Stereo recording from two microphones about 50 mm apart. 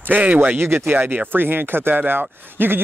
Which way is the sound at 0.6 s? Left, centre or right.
Right.